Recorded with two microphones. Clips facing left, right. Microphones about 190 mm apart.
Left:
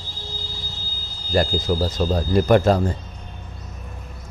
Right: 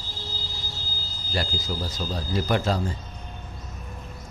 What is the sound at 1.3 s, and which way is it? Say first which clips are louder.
Speech: left 10 dB; 55° left (ahead or behind).